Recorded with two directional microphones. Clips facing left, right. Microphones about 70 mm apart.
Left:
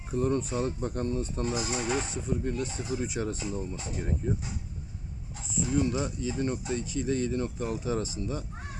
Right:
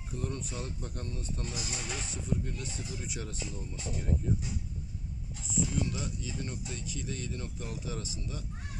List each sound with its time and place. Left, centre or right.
0.1 s speech: left